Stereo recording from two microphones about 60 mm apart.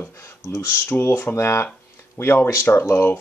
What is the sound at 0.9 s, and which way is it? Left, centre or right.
Speech, left.